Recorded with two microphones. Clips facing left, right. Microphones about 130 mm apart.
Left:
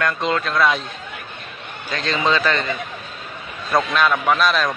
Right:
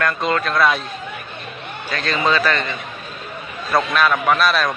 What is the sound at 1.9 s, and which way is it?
Speech, 20° left (ahead or behind).